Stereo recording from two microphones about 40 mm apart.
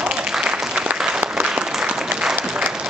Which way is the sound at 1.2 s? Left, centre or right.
Right.